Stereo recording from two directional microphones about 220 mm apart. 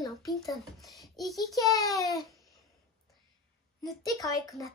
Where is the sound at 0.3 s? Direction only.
Centre (ahead or behind).